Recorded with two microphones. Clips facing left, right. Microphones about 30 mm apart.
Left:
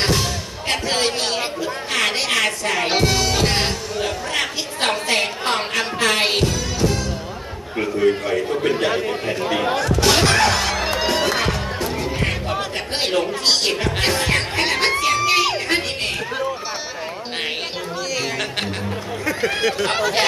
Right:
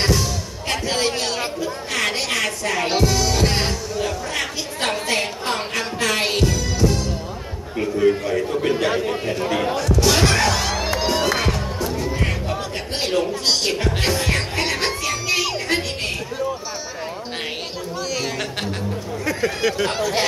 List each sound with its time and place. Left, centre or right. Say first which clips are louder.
0.0 s slam: left 1 dB; left
0.8 s a sound: even; left
7.8 s chatter: even; left
8.6 s a man's voice: left 1 dB; centre
9.7 s music: left 2 dB; left
11.8 s music: even; left
19.9 s speech: left 2 dB; left